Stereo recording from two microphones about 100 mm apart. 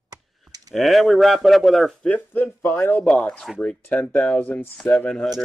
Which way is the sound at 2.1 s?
20° left (ahead or behind).